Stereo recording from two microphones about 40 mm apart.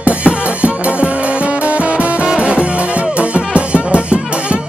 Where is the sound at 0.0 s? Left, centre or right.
Right.